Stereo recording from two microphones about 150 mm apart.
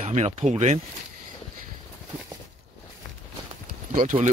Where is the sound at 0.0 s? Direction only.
45° right (ahead or behind).